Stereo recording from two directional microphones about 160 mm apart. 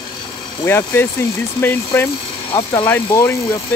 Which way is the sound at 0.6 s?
15° left (ahead or behind).